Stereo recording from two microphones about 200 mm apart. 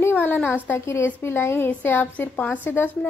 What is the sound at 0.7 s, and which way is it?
A woman's voice, 10° left (ahead or behind).